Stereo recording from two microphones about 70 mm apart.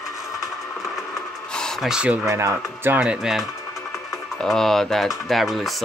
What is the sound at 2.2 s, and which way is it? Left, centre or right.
Speech, right.